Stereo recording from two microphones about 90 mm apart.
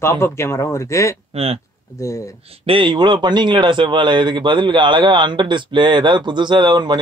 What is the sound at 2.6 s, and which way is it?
Speech, 75° right (ahead or behind).